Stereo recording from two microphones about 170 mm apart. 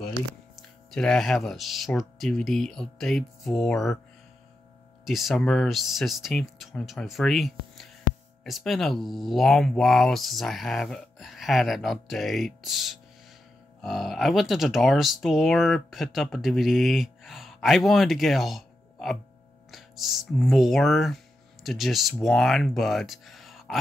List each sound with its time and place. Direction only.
0.6 s speech: centre (ahead or behind)
5.0 s speech: centre (ahead or behind)